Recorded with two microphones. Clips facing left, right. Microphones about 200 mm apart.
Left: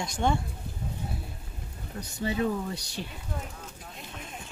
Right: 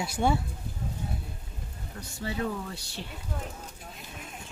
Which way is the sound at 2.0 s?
20° left (ahead or behind).